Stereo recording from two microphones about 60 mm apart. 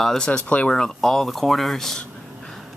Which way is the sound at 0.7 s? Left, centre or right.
Centre.